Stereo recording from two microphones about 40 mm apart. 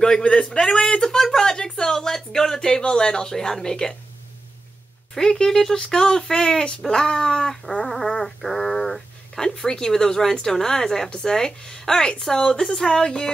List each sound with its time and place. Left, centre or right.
0.3 s speech: centre
5.1 s speech: centre